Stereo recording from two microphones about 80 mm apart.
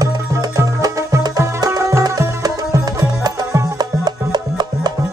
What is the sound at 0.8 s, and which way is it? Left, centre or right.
Music, right.